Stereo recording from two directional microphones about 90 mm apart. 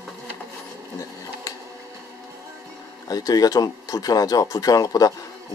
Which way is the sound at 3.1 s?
45° left (ahead or behind).